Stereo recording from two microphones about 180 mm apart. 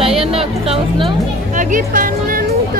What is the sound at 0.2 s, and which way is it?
Music, 30° right (ahead or behind).